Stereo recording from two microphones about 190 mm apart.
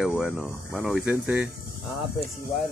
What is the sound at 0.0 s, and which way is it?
Speech, centre (ahead or behind).